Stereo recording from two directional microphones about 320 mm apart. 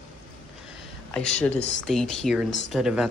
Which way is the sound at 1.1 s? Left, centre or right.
Centre.